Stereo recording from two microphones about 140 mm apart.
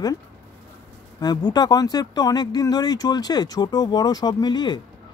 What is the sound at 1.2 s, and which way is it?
Speech, 30° left (ahead or behind).